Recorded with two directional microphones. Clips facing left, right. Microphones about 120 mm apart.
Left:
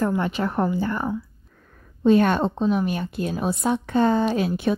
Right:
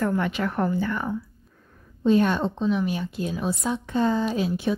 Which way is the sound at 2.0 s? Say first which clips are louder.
Left 3 dB; 65° left (ahead or behind).